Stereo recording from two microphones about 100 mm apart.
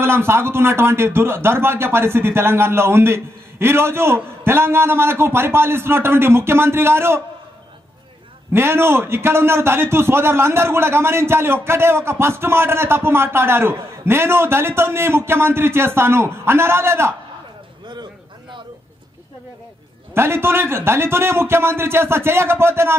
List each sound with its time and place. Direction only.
0.0 s a man's voice: 25° right (ahead or behind)
8.5 s a man's voice: 25° right (ahead or behind)
20.2 s a man's voice: 25° right (ahead or behind)